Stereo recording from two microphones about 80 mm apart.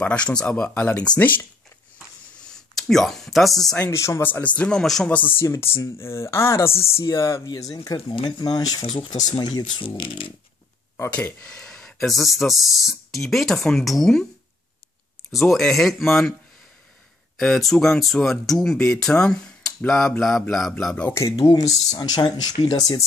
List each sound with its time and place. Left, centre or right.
0.0 s speech: centre
2.3 s a sound: centre
3.9 s speech: left
4.2 s speech: left
5.4 s speech: left
8.1 s speech: left
11.3 s speech: centre
15.5 s speech: centre
17.4 s speech: centre
21.1 s speech: left